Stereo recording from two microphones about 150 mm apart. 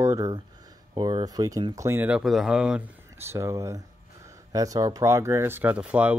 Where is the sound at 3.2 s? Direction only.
20° right (ahead or behind).